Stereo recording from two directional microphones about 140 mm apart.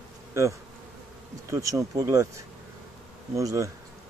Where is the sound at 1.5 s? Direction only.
20° right (ahead or behind).